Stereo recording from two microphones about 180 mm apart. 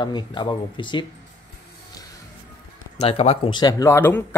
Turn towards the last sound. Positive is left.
turn(degrees=10)  # may be behind; listen again after turning